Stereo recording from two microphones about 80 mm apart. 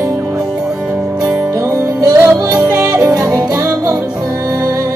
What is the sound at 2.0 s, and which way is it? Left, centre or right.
Music, right.